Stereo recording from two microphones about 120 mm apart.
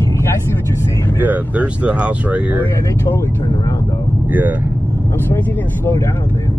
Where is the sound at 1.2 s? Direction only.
15° right (ahead or behind).